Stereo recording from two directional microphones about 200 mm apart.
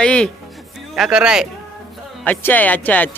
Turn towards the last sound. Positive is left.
turn(degrees=10)  # may be behind; listen again after turning